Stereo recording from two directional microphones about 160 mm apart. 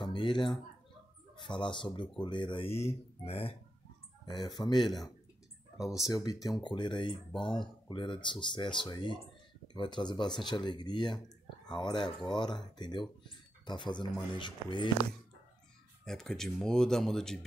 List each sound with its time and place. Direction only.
0.0 s a sound: 30° left (ahead or behind)
1.4 s speech: 30° left (ahead or behind)
4.3 s speech: 25° left (ahead or behind)
5.8 s speech: centre (ahead or behind)
6.2 s speech: 25° left (ahead or behind)
16.1 s speech: 5° left (ahead or behind)